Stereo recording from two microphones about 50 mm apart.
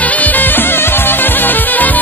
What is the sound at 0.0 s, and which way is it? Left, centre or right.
Music, left.